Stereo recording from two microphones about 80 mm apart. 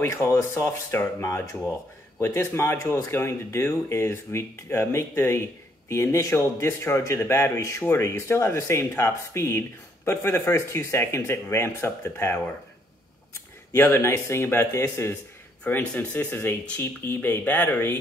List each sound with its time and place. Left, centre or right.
0.0 s speech: left
15.7 s speech: centre